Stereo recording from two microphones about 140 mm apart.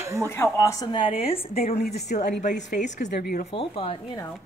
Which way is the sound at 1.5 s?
90° left.